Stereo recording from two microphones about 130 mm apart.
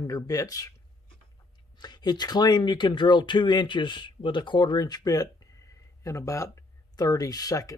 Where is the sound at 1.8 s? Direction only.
30° left (ahead or behind).